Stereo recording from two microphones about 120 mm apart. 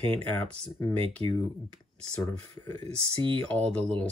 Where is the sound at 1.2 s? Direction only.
50° right (ahead or behind).